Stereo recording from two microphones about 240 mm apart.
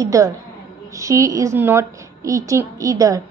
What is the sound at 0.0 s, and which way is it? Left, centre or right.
A woman's voice, centre.